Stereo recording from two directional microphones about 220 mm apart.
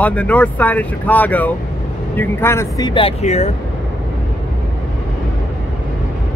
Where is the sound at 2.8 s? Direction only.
20° left (ahead or behind).